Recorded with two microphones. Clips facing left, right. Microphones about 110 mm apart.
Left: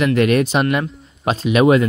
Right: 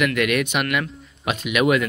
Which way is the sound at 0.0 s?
30° left (ahead or behind).